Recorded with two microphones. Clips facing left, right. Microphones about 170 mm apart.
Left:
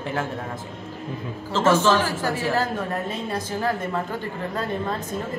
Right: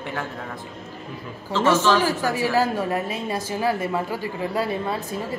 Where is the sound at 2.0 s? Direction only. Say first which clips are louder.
Right 3 dB; 15° right (ahead or behind).